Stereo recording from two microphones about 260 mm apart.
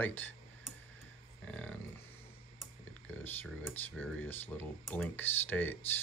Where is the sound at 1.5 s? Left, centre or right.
Centre.